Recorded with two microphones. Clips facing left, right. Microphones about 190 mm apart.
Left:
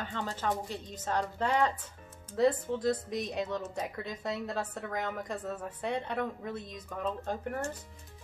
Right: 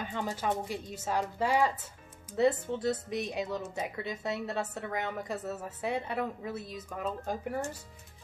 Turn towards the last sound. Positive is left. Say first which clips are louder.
# right 1 dB
turn(degrees=-10)  # may be behind; listen again after turning